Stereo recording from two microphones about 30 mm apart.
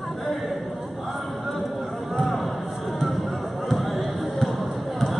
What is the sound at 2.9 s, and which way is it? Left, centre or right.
Basketball bounce, centre.